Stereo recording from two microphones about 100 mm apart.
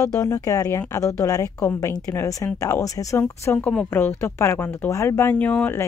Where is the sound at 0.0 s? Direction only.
35° left (ahead or behind).